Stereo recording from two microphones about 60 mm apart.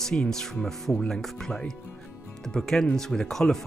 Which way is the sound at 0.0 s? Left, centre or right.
Centre.